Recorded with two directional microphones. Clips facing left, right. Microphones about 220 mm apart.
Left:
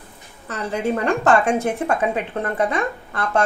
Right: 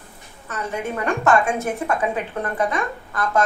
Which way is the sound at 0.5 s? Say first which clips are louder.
Left 4 dB; 30° left (ahead or behind).